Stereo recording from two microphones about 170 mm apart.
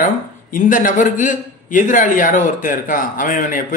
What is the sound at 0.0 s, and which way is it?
A man's voice, 50° left (ahead or behind).